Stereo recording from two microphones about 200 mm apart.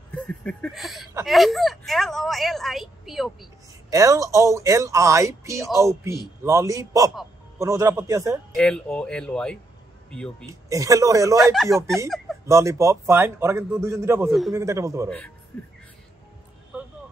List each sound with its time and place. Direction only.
0.1 s a sound: 5° left (ahead or behind)
1.2 s a woman's voice: centre (ahead or behind)
3.9 s a man's voice: 15° right (ahead or behind)
8.5 s a woman's voice: 5° left (ahead or behind)
10.5 s a man's voice: 15° right (ahead or behind)
11.4 s a woman's voice: centre (ahead or behind)
12.4 s a man's voice: 15° right (ahead or behind)
15.0 s a woman's voice: 5° left (ahead or behind)